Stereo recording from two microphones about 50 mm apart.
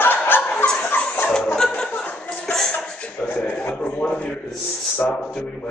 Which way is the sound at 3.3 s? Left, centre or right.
Left.